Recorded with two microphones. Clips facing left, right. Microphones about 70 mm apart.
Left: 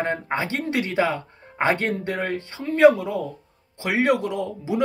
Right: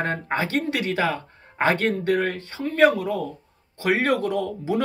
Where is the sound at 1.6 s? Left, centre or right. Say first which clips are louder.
Right 2 dB; left.